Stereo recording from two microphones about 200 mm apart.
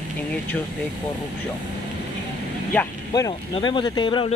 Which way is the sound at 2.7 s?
15° left (ahead or behind).